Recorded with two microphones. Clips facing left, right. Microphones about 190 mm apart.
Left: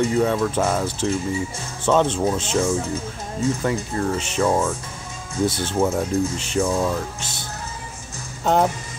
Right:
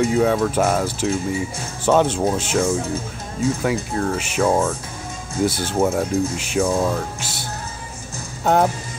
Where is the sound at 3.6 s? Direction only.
5° right (ahead or behind).